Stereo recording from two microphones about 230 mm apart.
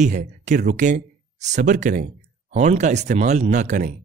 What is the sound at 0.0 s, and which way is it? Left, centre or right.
Speech, right.